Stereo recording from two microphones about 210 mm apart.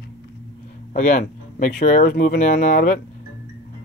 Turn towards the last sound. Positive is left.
turn(degrees=40)  # may be behind; listen again after turning